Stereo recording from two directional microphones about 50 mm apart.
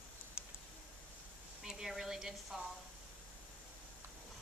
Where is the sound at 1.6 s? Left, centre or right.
Centre.